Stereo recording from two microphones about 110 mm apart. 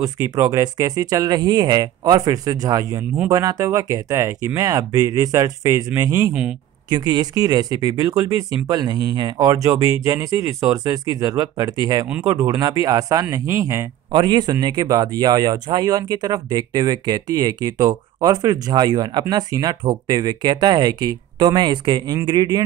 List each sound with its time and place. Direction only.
0.4 s speech: 30° right (ahead or behind)
14.1 s speech: 40° right (ahead or behind)